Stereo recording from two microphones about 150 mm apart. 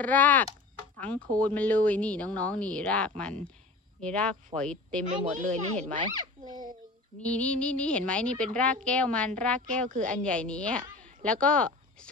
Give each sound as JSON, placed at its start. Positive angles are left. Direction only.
{"t": 0.0, "sound": "a woman's voice", "side_deg": 10}
{"t": 5.3, "sound": "speech", "side_deg": -55}
{"t": 5.9, "sound": "speech", "side_deg": -30}
{"t": 7.2, "sound": "speech", "side_deg": 10}
{"t": 9.8, "sound": "speech", "side_deg": -60}
{"t": 10.2, "sound": "speech", "side_deg": 5}
{"t": 10.8, "sound": "a sound", "side_deg": -60}
{"t": 11.2, "sound": "speech", "side_deg": 10}